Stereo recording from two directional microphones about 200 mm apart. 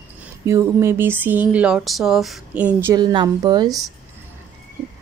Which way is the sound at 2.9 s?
20° right (ahead or behind).